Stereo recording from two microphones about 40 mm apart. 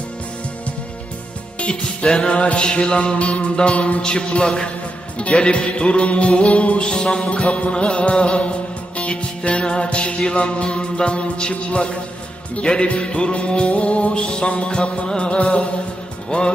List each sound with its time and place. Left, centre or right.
1.6 s music: left
4.0 s music: left
16.3 s speech: left